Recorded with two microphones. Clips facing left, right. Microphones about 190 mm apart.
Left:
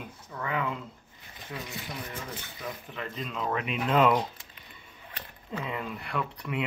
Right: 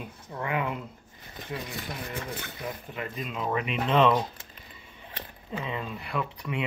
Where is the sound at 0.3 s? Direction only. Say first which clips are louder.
Right 2 dB; 20° right (ahead or behind).